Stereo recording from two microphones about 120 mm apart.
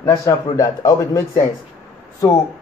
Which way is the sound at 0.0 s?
25° left (ahead or behind).